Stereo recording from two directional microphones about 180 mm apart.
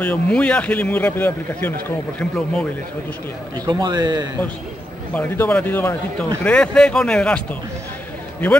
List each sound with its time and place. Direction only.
0.0 s speech: 5° left (ahead or behind)
3.6 s speech: 25° right (ahead or behind)
5.1 s speech: 10° left (ahead or behind)